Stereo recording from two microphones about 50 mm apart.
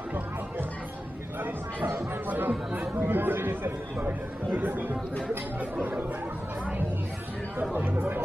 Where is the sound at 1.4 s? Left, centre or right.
Right.